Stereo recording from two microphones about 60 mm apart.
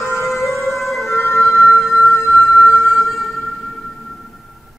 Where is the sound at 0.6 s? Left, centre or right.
Left.